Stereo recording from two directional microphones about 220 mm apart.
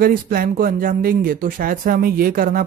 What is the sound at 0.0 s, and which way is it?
Speech, 40° right (ahead or behind).